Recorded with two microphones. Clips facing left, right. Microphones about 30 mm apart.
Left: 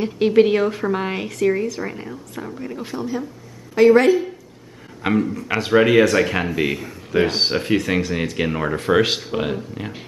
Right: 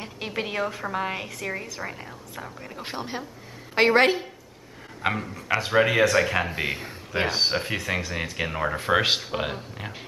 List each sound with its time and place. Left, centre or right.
0.0 s a woman's voice: centre
2.8 s a woman's voice: right
5.0 s a woman's voice: centre